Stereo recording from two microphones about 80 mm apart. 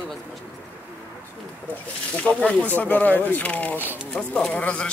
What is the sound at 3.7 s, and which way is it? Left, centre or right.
Speech, right.